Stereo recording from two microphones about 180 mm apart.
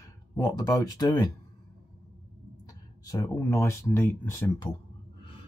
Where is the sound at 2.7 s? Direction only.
20° left (ahead or behind).